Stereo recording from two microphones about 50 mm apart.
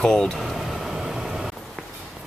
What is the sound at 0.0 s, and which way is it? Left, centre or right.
Speech, centre.